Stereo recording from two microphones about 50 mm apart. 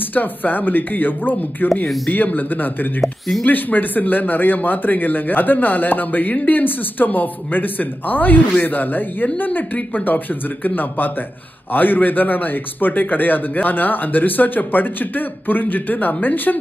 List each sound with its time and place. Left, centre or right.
0.1 s speech: left
3.0 s speech: centre
3.4 s speech: left